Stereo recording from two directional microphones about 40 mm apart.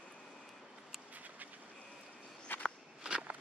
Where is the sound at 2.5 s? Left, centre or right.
Left.